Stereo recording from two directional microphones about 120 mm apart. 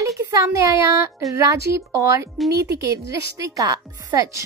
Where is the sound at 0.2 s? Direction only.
25° right (ahead or behind).